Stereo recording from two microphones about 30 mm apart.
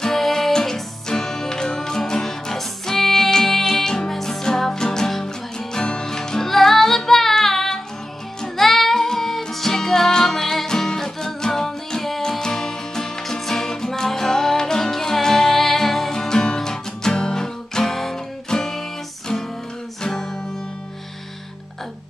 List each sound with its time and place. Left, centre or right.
0.1 s music: centre